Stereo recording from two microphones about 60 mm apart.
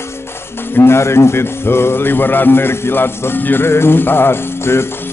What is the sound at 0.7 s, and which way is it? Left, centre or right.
Speech, left.